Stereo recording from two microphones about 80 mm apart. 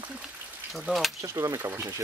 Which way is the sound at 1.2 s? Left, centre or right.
Right.